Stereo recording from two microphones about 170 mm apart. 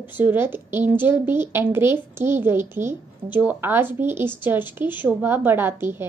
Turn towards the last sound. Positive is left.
turn(degrees=-15)  # may be behind; listen again after turning